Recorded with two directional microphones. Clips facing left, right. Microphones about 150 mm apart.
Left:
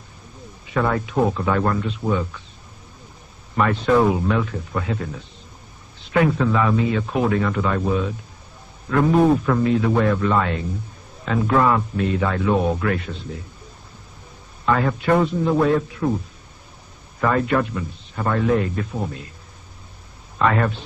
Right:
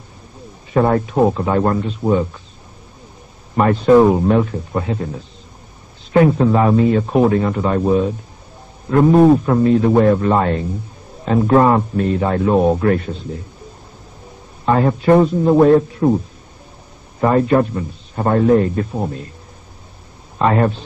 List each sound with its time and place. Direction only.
0.7 s speech: 40° right (ahead or behind)
3.5 s speech: 35° right (ahead or behind)
14.7 s speech: 35° right (ahead or behind)
17.2 s speech: 30° right (ahead or behind)
20.3 s speech: 30° right (ahead or behind)